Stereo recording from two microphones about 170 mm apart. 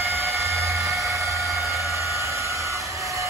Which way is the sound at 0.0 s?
15° right (ahead or behind).